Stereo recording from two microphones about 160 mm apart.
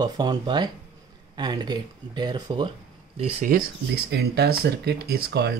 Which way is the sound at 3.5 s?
60° right (ahead or behind).